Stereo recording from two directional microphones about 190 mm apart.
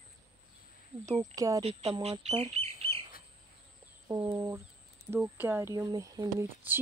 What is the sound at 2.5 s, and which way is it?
Bird, 30° right (ahead or behind).